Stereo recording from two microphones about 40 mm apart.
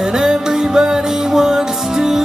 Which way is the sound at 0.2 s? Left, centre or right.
Centre.